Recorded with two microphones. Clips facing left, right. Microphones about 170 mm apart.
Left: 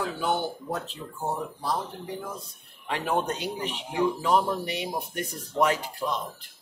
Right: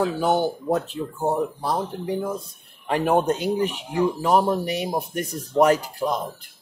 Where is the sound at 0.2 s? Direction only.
40° right (ahead or behind).